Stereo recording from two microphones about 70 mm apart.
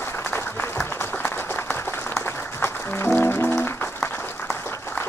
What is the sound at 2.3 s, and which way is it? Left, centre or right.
Music, left.